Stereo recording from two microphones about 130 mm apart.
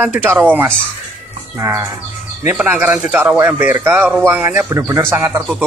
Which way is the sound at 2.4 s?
10° right (ahead or behind).